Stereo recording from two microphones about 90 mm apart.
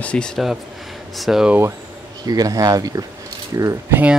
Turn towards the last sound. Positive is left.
turn(degrees=-15)  # may be behind; listen again after turning